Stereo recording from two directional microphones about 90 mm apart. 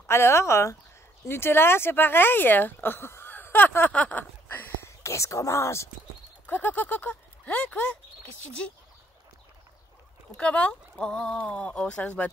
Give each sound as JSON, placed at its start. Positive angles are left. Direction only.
{"t": 0.0, "sound": "speech", "side_deg": 30}
{"t": 6.4, "sound": "speech", "side_deg": 20}
{"t": 10.3, "sound": "speech", "side_deg": 15}